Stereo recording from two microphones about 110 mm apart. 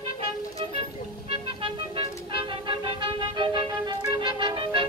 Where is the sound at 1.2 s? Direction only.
60° right (ahead or behind).